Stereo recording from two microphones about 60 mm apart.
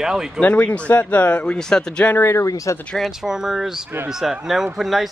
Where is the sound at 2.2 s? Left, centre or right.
Left.